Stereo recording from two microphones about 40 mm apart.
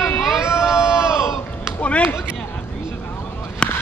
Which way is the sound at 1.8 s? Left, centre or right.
Left.